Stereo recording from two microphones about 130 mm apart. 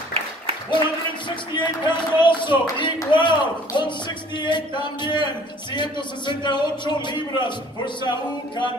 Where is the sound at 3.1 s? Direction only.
35° left (ahead or behind).